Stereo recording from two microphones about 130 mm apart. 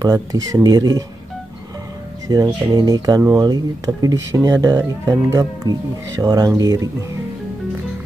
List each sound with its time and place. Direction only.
0.0 s speech: 25° right (ahead or behind)
2.2 s speech: 30° right (ahead or behind)